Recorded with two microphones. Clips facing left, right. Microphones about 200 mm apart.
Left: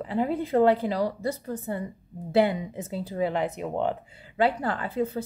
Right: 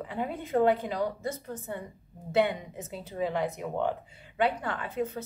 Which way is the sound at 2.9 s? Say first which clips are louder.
Left 7 dB; 35° left (ahead or behind).